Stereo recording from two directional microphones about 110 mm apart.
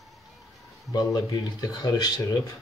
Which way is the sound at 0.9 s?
35° left (ahead or behind).